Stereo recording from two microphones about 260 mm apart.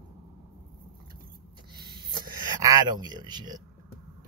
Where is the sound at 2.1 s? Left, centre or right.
Centre.